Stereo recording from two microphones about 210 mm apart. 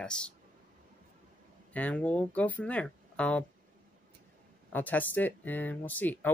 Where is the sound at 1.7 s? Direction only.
5° left (ahead or behind).